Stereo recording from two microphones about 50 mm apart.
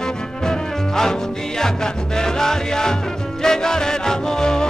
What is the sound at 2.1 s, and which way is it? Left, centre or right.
Music, centre.